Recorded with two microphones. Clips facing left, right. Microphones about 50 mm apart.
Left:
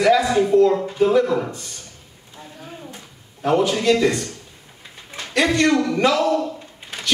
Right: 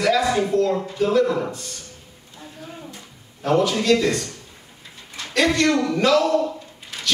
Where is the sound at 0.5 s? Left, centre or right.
Centre.